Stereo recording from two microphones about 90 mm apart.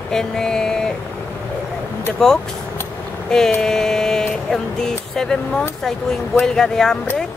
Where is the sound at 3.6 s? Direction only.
5° left (ahead or behind).